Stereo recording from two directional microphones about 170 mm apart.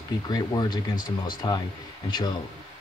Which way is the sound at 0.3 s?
25° left (ahead or behind).